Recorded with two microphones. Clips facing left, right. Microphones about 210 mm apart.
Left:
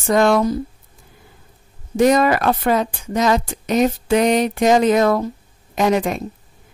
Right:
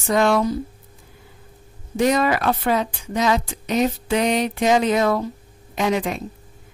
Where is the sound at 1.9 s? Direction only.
45° left (ahead or behind).